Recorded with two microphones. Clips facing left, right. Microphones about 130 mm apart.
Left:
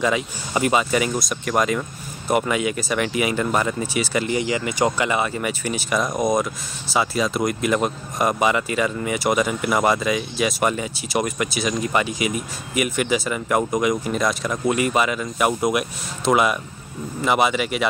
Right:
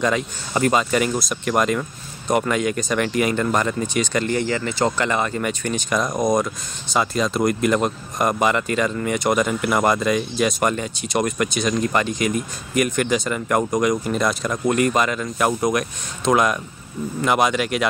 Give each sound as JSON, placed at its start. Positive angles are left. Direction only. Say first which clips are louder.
{"t": 0.0, "sound": "speech", "louder": "even", "side_deg": 5}